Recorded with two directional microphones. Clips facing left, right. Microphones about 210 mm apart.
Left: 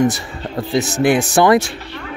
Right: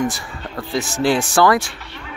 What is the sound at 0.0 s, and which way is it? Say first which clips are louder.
Speech: left 6 dB; 20° left (ahead or behind).